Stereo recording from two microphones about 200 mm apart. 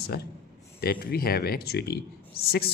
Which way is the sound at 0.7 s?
50° left (ahead or behind).